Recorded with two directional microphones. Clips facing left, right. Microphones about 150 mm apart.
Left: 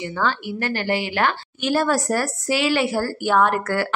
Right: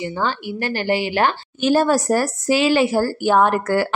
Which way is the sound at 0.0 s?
20° right (ahead or behind).